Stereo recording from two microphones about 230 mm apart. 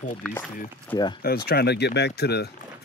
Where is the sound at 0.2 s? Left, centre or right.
Centre.